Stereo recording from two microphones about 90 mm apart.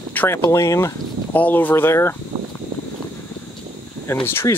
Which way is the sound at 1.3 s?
20° left (ahead or behind).